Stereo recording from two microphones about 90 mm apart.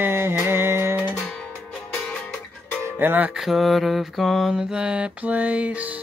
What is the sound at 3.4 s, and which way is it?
Mantra, centre (ahead or behind).